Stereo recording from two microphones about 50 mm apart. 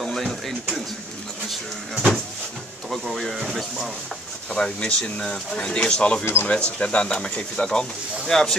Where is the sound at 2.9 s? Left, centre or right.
Centre.